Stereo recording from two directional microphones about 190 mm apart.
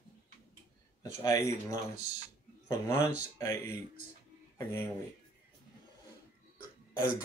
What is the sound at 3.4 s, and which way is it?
Speech, 15° left (ahead or behind).